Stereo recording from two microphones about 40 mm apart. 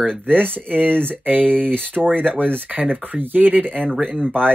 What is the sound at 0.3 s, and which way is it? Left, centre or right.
Speech, right.